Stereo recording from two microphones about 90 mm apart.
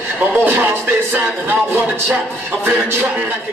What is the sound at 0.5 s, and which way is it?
Speech, 20° right (ahead or behind).